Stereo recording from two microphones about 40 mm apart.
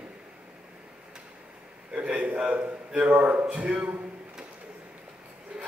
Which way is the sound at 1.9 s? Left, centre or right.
Right.